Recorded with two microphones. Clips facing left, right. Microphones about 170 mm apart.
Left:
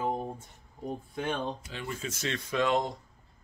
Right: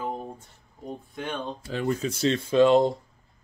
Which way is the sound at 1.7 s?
45° right (ahead or behind).